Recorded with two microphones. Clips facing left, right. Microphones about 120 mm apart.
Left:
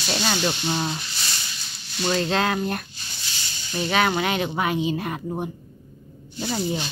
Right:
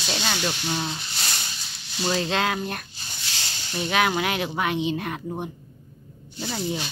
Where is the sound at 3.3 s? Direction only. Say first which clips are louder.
Right 4 dB; 75° right (ahead or behind).